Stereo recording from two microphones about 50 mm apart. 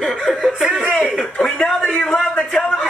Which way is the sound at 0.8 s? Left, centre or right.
Left.